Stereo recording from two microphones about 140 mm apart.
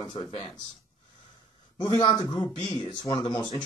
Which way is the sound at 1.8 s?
30° left (ahead or behind).